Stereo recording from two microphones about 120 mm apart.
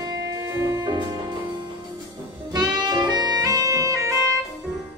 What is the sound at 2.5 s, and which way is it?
Music, 35° right (ahead or behind).